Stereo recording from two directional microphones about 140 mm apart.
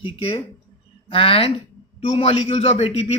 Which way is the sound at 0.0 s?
40° left (ahead or behind).